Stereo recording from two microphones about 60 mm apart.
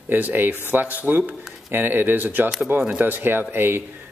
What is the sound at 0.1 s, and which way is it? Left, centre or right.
Speech, right.